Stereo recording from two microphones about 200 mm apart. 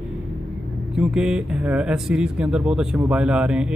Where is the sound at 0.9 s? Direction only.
5° right (ahead or behind).